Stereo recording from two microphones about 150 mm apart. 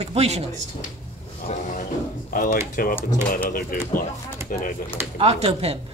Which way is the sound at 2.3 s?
65° left (ahead or behind).